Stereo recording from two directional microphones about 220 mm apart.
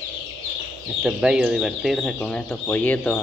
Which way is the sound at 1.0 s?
5° right (ahead or behind).